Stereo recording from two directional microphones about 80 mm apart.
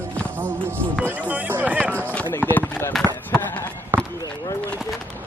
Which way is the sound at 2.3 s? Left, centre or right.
Left.